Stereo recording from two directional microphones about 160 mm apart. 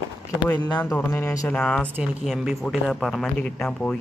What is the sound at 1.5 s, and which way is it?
Speech, 5° left (ahead or behind).